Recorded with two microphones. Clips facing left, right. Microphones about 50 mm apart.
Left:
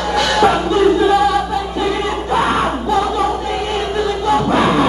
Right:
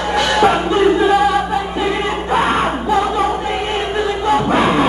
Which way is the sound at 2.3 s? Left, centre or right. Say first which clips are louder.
Even; right.